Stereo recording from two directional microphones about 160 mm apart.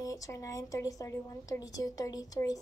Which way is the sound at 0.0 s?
20° left (ahead or behind).